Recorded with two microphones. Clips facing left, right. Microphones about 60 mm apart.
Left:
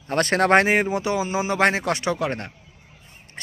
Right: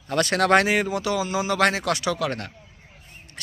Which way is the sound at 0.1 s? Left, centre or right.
Left.